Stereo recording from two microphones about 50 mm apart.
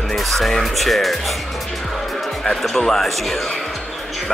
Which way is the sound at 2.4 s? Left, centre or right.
Centre.